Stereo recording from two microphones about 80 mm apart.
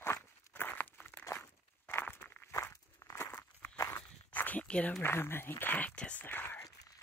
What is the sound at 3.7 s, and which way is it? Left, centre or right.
Walk, left.